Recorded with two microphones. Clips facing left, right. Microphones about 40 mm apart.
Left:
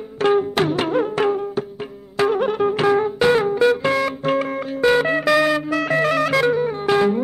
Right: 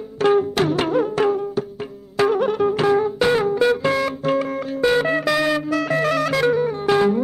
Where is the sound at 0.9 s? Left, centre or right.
Left.